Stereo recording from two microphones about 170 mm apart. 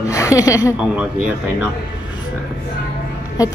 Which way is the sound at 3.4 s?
20° left (ahead or behind).